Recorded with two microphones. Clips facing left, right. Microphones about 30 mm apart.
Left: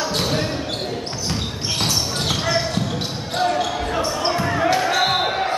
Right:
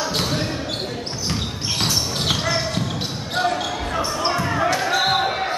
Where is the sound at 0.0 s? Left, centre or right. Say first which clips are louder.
Left 1 dB; centre.